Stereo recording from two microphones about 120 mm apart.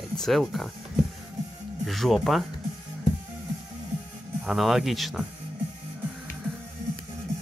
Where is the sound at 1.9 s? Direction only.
Centre (ahead or behind).